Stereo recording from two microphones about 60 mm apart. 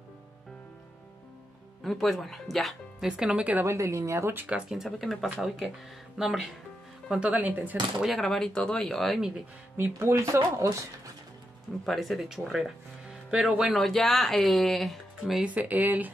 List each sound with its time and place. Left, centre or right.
1.8 s speech: centre
3.0 s speech: centre
3.6 s speech: right
4.5 s speech: centre
4.7 s speech: centre
7.1 s speech: centre
8.2 s speech: centre
9.9 s speech: right
11.8 s speech: centre
13.7 s speech: centre
15.4 s speech: right